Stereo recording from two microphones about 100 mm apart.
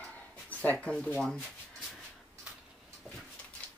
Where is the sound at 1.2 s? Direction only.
5° left (ahead or behind).